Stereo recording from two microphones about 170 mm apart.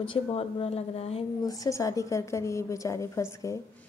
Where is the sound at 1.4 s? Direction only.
20° left (ahead or behind).